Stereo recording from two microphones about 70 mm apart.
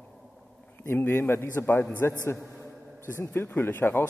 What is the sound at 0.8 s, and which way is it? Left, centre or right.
A man's voice, left.